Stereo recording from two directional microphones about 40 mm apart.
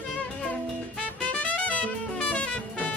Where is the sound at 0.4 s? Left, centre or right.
Left.